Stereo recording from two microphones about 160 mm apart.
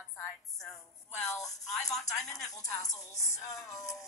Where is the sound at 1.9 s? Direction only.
20° left (ahead or behind).